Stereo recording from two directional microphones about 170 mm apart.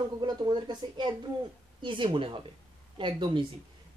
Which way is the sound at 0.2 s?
25° right (ahead or behind).